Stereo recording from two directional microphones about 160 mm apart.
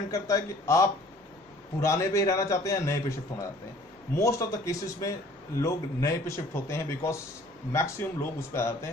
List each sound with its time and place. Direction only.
0.1 s a man's voice: 20° left (ahead or behind)